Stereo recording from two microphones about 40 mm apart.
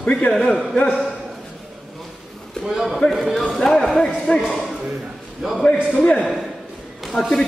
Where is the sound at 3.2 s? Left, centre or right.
Centre.